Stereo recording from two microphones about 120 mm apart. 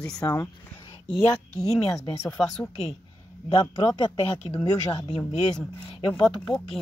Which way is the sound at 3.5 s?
35° left (ahead or behind).